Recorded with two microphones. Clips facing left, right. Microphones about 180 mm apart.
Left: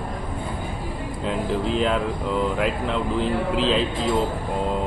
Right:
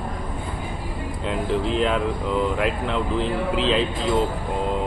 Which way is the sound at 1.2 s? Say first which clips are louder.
Even; centre (ahead or behind).